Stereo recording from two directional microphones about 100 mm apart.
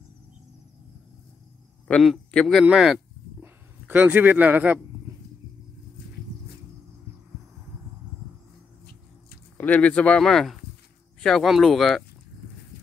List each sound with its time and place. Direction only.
1.9 s a man's voice: 15° left (ahead or behind)
2.3 s speech: centre (ahead or behind)
3.3 s a sound: 20° right (ahead or behind)
9.6 s speech: 15° left (ahead or behind)